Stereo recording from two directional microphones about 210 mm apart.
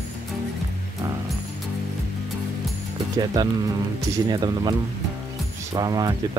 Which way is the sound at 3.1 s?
20° right (ahead or behind).